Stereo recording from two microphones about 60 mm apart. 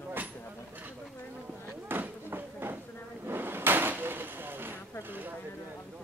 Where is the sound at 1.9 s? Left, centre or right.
Right.